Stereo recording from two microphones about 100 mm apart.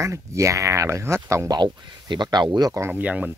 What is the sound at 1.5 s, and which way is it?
Speech, 50° right (ahead or behind).